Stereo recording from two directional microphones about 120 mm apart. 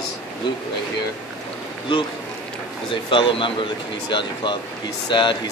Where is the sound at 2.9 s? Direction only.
45° left (ahead or behind).